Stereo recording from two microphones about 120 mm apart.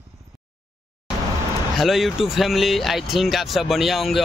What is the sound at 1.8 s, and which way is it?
Speech, centre (ahead or behind).